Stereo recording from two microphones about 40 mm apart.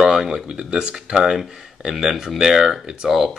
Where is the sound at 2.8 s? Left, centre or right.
Right.